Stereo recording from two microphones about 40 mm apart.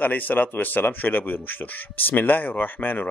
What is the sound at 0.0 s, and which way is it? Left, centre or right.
Speech, left.